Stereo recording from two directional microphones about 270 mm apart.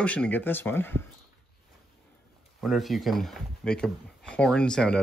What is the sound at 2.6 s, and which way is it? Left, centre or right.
Speech, centre.